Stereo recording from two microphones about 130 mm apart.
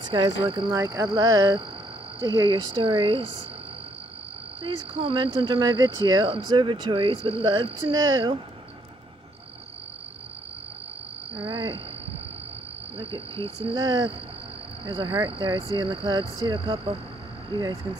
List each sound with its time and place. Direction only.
0.0 s speech: 35° right (ahead or behind)
4.6 s speech: 45° right (ahead or behind)
11.3 s speech: 40° right (ahead or behind)
12.9 s cricket: 45° right (ahead or behind)
13.7 s speech: 35° right (ahead or behind)